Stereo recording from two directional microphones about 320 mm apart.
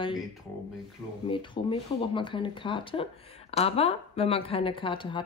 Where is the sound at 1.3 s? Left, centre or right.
Centre.